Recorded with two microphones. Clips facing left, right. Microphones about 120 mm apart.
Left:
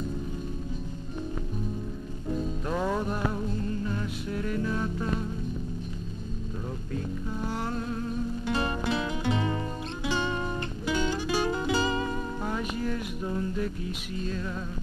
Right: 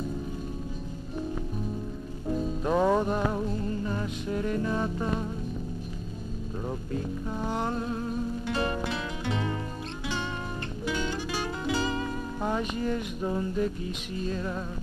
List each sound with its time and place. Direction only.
2.6 s music: 15° right (ahead or behind)
7.5 s music: 15° right (ahead or behind)
8.5 s music: centre (ahead or behind)
12.4 s music: 15° right (ahead or behind)
14.3 s music: 15° right (ahead or behind)